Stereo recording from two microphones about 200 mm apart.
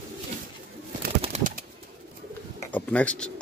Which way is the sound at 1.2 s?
35° right (ahead or behind).